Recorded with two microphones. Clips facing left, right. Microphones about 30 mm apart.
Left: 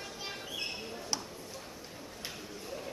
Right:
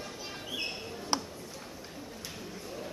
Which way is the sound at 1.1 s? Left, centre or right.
Right.